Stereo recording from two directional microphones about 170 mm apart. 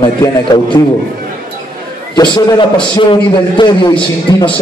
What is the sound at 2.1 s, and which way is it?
A man's voice, 25° left (ahead or behind).